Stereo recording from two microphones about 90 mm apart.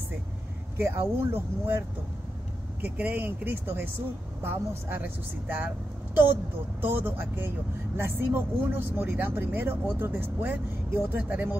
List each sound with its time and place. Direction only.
0.7 s speech: 25° right (ahead or behind)
2.8 s speech: 20° right (ahead or behind)
6.8 s speech: 25° right (ahead or behind)